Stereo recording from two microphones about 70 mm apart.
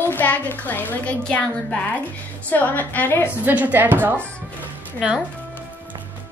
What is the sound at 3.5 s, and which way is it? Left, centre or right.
Speech, right.